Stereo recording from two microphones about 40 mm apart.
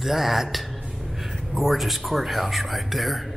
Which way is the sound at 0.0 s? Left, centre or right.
Centre.